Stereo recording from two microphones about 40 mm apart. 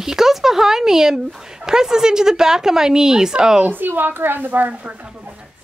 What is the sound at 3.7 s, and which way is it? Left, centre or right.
A woman's voice, right.